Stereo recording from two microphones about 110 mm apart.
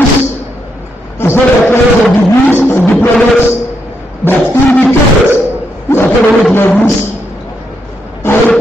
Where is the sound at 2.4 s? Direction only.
20° left (ahead or behind).